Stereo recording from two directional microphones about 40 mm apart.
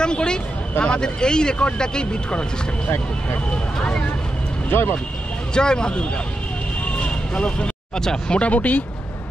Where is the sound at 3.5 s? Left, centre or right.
Left.